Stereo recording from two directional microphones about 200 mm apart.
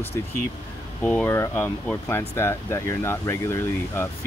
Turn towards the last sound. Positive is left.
turn(degrees=10)  # may be behind; listen again after turning